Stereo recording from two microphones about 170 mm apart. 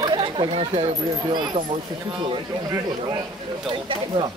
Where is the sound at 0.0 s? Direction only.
25° right (ahead or behind).